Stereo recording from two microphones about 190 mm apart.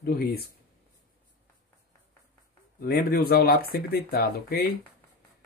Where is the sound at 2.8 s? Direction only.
50° left (ahead or behind).